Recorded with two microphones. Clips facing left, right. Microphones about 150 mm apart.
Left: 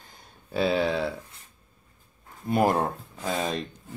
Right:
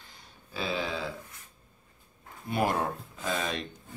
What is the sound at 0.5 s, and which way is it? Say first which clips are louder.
Speech: left 8 dB; 60° left (ahead or behind).